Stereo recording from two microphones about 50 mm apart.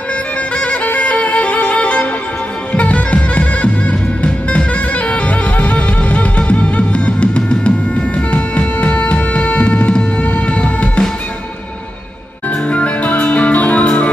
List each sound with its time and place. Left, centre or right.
0.6 s music: left
12.6 s music: left